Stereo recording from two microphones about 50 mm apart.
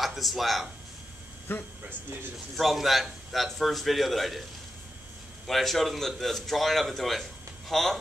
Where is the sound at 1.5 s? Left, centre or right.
Left.